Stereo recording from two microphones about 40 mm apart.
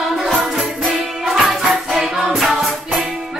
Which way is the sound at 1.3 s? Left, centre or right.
Centre.